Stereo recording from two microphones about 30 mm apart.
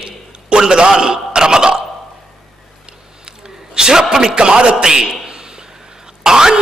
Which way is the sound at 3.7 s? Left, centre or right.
Right.